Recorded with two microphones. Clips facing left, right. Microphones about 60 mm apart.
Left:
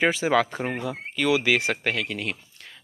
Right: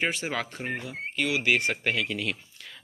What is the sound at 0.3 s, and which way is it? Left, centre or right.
Speech, left.